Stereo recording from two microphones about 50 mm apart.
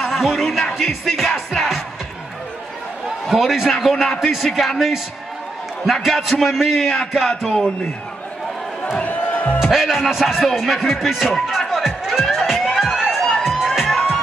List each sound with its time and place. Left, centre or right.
0.0 s music: centre
3.3 s speech: centre
6.0 s speech: centre
8.9 s music: left
9.6 s speech: centre
11.7 s music: centre